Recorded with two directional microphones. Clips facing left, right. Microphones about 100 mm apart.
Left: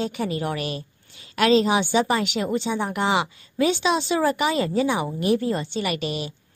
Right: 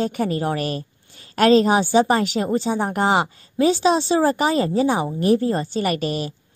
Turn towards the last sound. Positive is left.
turn(degrees=-40)  # may be behind; listen again after turning